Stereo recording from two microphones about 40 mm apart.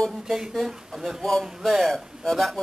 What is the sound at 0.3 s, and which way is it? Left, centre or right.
Speech, centre.